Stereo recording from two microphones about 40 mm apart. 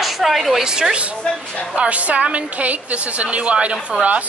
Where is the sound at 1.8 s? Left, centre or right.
Right.